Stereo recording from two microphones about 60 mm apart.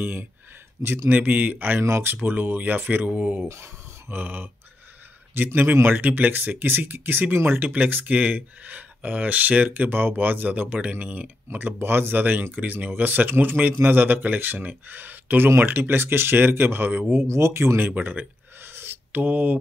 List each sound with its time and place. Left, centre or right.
0.0 s speech: right
1.1 s speech: right
1.8 s speech: right
2.2 s speech: right
3.4 s speech: right
11.4 s speech: right
17.1 s speech: right
17.9 s speech: right
18.6 s a sound: right